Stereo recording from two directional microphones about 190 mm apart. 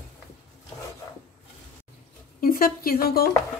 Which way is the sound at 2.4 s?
50° left (ahead or behind).